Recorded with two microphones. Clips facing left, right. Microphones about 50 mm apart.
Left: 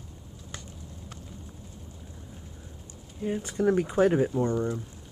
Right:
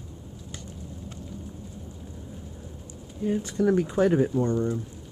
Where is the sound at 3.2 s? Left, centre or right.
Centre.